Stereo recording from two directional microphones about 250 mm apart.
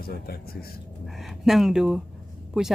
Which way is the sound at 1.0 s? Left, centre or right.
Centre.